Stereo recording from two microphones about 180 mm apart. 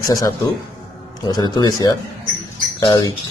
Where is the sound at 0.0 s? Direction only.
20° left (ahead or behind).